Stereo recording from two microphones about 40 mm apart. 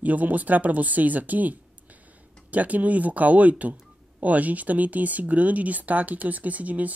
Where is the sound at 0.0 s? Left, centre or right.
Right.